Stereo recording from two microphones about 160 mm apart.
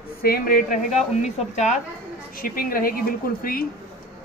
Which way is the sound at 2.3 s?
65° left (ahead or behind).